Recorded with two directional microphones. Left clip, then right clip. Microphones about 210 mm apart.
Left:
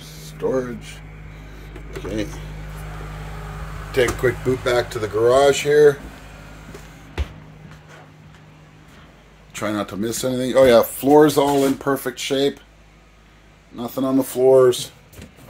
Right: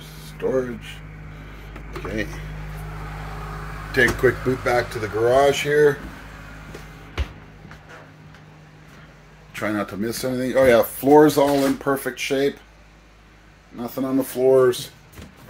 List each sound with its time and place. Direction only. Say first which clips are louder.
0.4 s speech: left 1 dB; 10° left (ahead or behind)
3.9 s speech: right 1 dB; 10° left (ahead or behind)
9.6 s speech: left 1 dB; 20° left (ahead or behind)
11.0 s speech: even; 10° left (ahead or behind)
11.3 s speech: left 1 dB; 20° left (ahead or behind)
12.1 s speech: left 1 dB; 25° left (ahead or behind)
13.7 s speech: left 3 dB; 30° left (ahead or behind)
14.5 s speech: left 3 dB; 15° left (ahead or behind)